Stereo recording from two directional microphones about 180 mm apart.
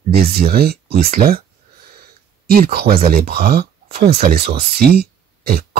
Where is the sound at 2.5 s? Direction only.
55° right (ahead or behind).